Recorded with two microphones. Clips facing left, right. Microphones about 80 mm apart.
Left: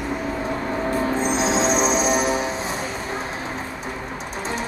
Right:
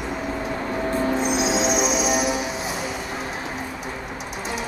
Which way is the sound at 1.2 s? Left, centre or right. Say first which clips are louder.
Left 1 dB; left.